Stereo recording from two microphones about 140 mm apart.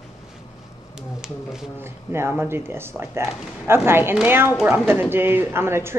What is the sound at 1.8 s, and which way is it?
Speech, 15° right (ahead or behind).